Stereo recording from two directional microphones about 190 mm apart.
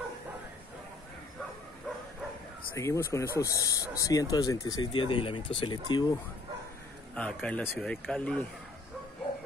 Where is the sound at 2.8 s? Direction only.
15° left (ahead or behind).